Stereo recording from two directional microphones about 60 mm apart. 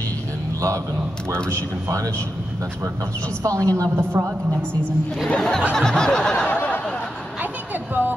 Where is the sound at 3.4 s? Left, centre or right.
Right.